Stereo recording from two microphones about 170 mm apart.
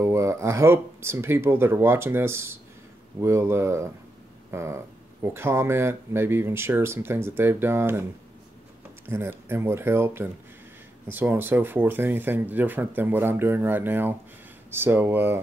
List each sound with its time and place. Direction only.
0.0 s speech: 15° right (ahead or behind)
9.0 s speech: 15° right (ahead or behind)